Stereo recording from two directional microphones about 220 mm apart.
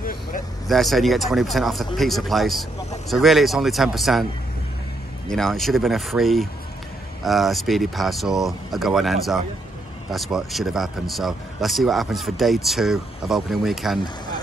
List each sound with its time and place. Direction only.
0.0 s vehicle: 40° left (ahead or behind)
0.7 s a man's voice: centre (ahead or behind)
5.3 s a man's voice: centre (ahead or behind)